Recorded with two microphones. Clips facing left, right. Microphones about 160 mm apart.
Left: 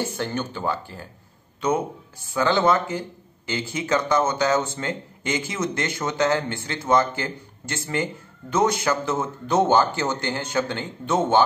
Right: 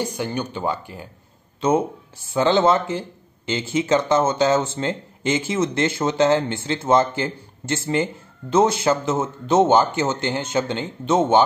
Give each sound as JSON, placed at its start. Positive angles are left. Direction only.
{"t": 0.0, "sound": "speech", "side_deg": -15}
{"t": 2.3, "sound": "speech", "side_deg": -25}